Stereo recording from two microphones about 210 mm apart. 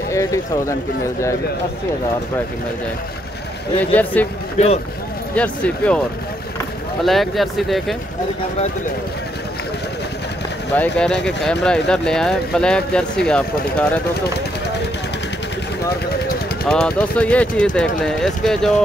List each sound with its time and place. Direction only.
0.1 s speech: 15° left (ahead or behind)
3.9 s speech: 5° left (ahead or behind)
4.6 s speech: 30° left (ahead or behind)
5.3 s speech: 5° left (ahead or behind)
7.1 s speech: centre (ahead or behind)
10.8 s speech: 5° left (ahead or behind)
16.6 s speech: 5° left (ahead or behind)